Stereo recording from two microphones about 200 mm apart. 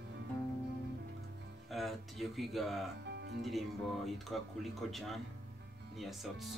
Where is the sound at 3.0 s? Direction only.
55° right (ahead or behind).